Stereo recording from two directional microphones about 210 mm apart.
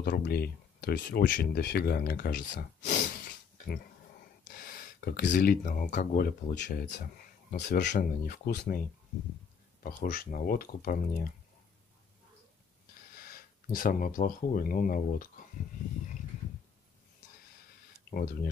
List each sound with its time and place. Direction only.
0.0 s speech: 45° left (ahead or behind)
7.8 s speech: 50° left (ahead or behind)
9.8 s speech: 45° left (ahead or behind)
13.1 s speech: 45° left (ahead or behind)